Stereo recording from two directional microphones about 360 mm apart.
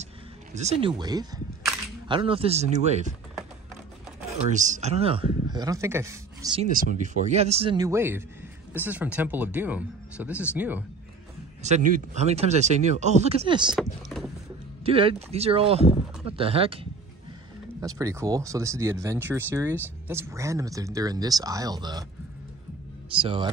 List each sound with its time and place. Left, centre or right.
0.6 s speech: centre
4.5 s speech: centre
11.6 s speech: centre
13.7 s rowboat: centre
14.9 s speech: centre
23.1 s speech: centre